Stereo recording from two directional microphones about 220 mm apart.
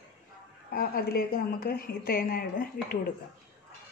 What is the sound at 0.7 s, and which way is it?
A woman's voice, 45° left (ahead or behind).